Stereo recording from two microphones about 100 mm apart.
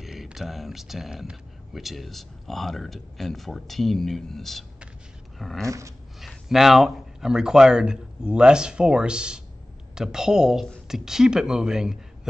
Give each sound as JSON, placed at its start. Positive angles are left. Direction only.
{"t": 0.0, "sound": "speech", "side_deg": -5}
{"t": 5.7, "sound": "dog", "side_deg": -30}
{"t": 6.2, "sound": "speech", "side_deg": 0}